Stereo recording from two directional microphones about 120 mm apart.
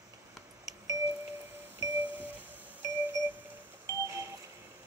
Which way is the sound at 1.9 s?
15° right (ahead or behind).